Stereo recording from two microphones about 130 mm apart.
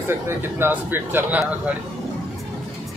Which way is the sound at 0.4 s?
15° right (ahead or behind).